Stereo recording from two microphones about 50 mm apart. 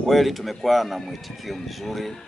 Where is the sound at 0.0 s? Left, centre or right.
Centre.